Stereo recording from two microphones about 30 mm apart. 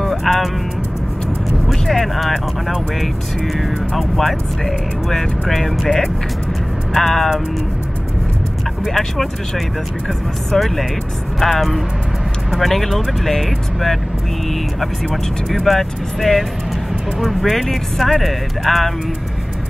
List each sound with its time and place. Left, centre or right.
0.2 s speech: centre
1.7 s speech: centre
3.5 s speech: centre
10.5 s speech: centre
15.5 s speech: centre